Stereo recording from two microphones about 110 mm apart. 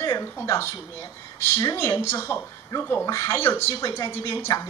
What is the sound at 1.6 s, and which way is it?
A woman's voice, 35° left (ahead or behind).